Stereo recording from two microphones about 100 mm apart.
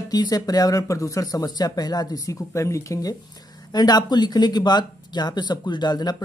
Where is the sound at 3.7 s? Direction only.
45° left (ahead or behind).